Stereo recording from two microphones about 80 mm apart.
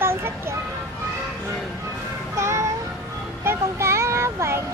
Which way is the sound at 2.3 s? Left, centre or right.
Right.